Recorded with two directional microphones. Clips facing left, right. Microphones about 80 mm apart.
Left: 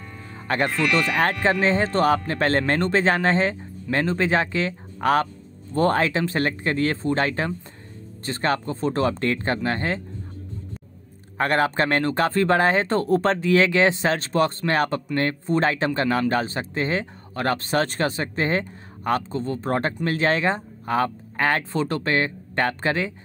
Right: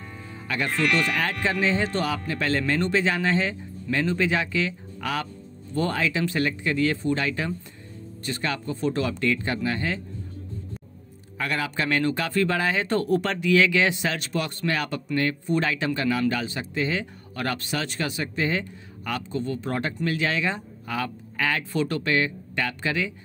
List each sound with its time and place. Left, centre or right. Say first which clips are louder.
0.5 s speech: left 3 dB; left
11.3 s a man's voice: left 7 dB; left